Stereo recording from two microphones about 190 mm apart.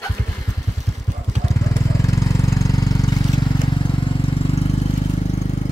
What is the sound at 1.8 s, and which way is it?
Vehicle, 15° left (ahead or behind).